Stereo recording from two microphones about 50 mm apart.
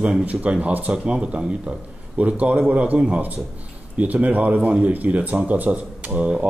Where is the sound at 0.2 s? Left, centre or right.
Right.